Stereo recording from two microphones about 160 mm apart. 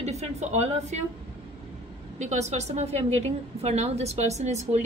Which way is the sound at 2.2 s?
45° right (ahead or behind).